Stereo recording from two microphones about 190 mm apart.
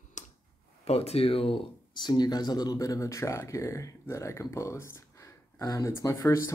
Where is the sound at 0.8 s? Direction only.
35° left (ahead or behind); by 6.5 s 15° left (ahead or behind).